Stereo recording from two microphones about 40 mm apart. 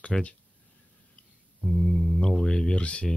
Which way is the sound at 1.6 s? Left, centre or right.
Centre.